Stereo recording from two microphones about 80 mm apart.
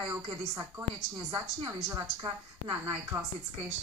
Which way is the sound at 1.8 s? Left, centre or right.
Right.